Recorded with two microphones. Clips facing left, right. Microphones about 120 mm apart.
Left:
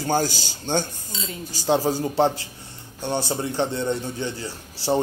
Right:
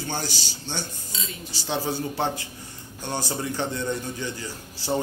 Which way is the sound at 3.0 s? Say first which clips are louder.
Left 4 dB; 20° left (ahead or behind).